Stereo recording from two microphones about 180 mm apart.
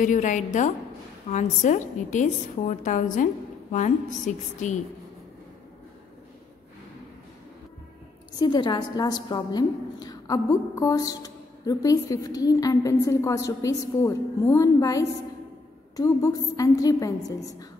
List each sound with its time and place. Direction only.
0.0 s a woman's voice: 45° left (ahead or behind)
8.4 s a woman's voice: 25° left (ahead or behind)